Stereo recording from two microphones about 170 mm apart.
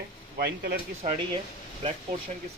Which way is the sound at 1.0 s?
30° right (ahead or behind).